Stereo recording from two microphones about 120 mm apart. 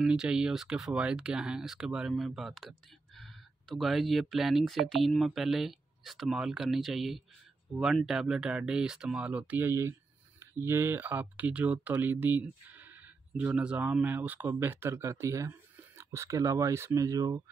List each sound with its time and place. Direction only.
0.0 s speech: 5° right (ahead or behind); by 17.4 s 30° right (ahead or behind)